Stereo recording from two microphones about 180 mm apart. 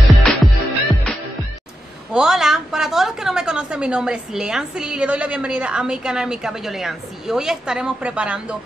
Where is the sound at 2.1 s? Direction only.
5° right (ahead or behind).